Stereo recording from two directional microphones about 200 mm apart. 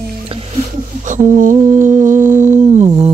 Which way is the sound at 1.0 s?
40° right (ahead or behind).